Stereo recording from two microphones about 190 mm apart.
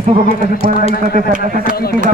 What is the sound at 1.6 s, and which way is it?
Speech, 55° left (ahead or behind).